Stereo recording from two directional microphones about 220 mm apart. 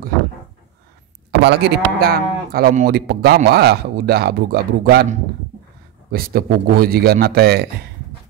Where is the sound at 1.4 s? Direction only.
50° right (ahead or behind).